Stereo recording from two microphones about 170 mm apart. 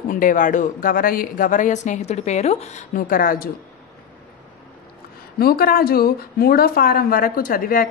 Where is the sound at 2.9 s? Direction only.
55° left (ahead or behind).